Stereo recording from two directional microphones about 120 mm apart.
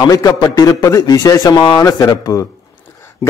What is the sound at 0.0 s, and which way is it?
A man's voice, 30° left (ahead or behind).